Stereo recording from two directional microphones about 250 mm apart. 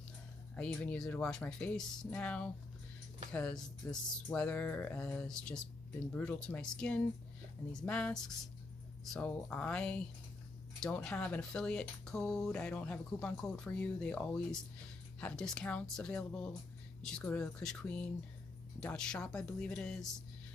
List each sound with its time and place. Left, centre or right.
0.6 s speech: centre